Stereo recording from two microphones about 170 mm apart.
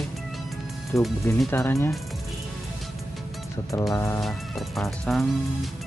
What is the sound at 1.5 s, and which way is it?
Speech, 15° left (ahead or behind).